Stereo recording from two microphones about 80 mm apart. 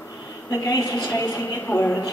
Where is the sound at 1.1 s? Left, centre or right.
Left.